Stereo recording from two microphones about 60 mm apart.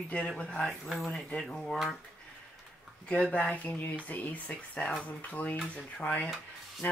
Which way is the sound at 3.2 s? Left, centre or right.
Centre.